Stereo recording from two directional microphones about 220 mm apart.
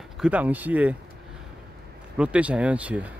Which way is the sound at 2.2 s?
5° right (ahead or behind).